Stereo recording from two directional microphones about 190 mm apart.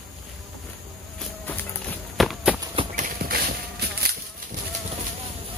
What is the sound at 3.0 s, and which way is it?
Clip-clop, 50° right (ahead or behind).